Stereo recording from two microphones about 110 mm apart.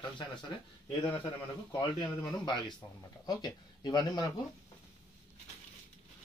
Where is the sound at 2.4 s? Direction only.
40° left (ahead or behind).